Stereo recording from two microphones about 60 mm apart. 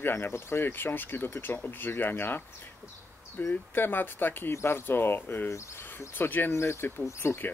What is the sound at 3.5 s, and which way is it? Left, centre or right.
Speech, left.